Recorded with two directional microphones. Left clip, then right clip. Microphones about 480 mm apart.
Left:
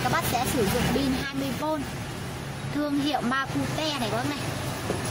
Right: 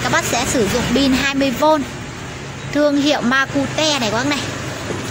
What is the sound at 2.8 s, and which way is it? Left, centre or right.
Speech, left.